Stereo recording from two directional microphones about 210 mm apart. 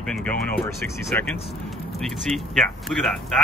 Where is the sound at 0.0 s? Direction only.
5° left (ahead or behind).